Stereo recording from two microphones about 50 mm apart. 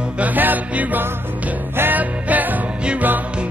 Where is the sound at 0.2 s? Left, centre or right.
Right.